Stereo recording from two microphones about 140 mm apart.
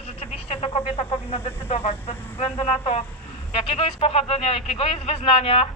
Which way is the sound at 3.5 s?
50° left (ahead or behind).